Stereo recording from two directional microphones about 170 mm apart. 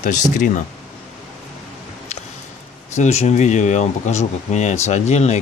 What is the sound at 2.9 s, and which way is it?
Speech, 40° left (ahead or behind).